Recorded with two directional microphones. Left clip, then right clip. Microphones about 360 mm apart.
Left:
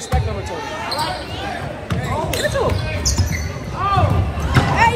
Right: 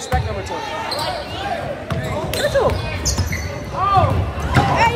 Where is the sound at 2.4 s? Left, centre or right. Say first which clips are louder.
Right 5 dB; centre.